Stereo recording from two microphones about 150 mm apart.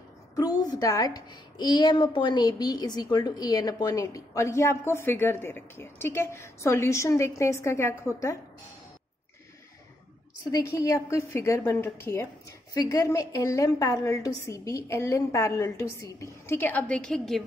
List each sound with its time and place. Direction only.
0.4 s a woman's voice: 25° left (ahead or behind)
10.5 s a woman's voice: 20° left (ahead or behind); by 17.4 s 5° left (ahead or behind)